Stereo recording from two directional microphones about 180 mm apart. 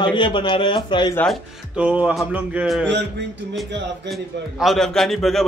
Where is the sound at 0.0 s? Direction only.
25° left (ahead or behind).